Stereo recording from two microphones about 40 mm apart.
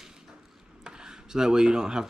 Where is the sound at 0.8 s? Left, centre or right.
Centre.